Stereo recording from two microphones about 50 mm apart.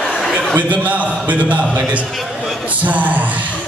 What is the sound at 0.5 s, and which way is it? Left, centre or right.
A man's voice, right.